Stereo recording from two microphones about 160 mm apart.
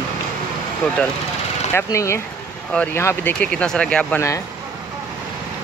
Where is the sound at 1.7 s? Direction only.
20° left (ahead or behind).